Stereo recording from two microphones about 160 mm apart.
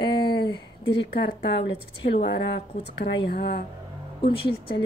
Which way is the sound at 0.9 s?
90° left.